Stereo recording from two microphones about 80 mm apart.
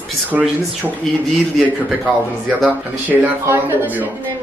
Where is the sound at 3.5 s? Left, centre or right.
Right.